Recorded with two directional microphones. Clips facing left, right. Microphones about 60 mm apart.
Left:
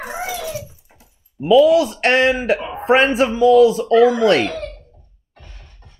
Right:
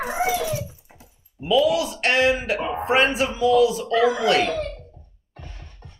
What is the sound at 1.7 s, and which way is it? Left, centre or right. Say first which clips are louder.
A man's voice: left 7 dB; left.